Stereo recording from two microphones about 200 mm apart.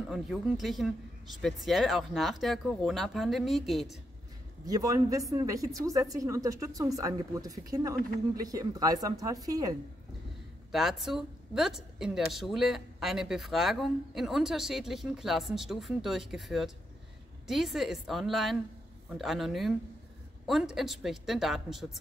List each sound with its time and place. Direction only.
0.1 s a woman's voice: centre (ahead or behind)
4.6 s speech: 15° right (ahead or behind)
10.7 s a woman's voice: centre (ahead or behind)